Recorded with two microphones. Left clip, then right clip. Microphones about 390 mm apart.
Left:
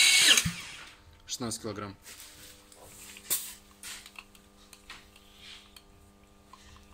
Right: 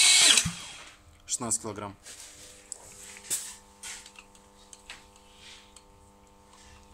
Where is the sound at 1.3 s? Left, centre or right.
Centre.